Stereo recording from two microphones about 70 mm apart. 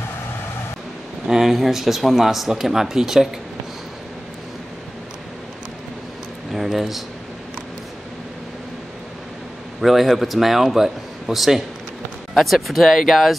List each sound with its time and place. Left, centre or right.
1.2 s speech: centre
6.5 s a sound: centre
9.8 s speech: centre